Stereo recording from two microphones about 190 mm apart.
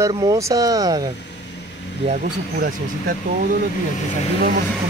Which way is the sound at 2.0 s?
45° right (ahead or behind).